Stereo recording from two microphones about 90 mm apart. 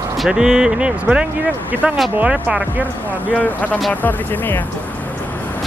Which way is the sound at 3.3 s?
15° left (ahead or behind).